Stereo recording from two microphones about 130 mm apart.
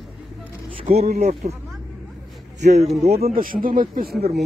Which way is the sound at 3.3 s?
90° right.